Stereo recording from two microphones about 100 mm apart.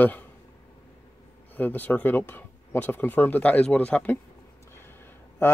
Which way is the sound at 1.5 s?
20° left (ahead or behind).